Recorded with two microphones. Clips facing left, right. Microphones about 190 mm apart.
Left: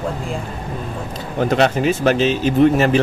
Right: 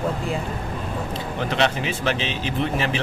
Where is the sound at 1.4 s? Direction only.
45° left (ahead or behind).